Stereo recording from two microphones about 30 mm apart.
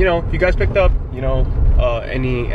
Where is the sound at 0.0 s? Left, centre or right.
Centre.